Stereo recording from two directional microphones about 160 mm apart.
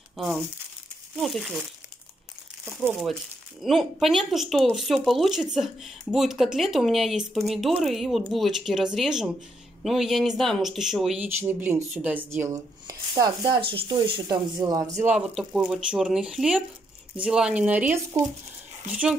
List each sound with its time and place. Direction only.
0.2 s speech: centre (ahead or behind)
2.9 s speech: centre (ahead or behind)
12.8 s speech: 25° right (ahead or behind)
15.0 s speech: 10° right (ahead or behind)